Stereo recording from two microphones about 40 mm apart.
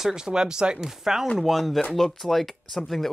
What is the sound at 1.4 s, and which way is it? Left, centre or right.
Speech, centre.